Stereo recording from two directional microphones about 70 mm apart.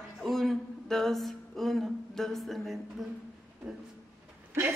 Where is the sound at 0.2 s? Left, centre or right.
Centre.